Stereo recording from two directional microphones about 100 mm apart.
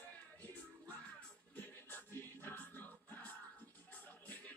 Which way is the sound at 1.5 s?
20° left (ahead or behind).